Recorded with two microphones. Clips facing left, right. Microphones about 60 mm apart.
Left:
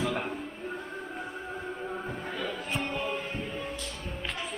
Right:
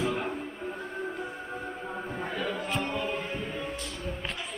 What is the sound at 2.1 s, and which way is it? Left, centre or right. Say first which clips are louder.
Music: right 2 dB; right.